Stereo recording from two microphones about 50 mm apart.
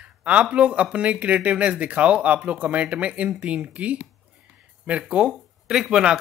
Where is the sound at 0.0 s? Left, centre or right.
Right.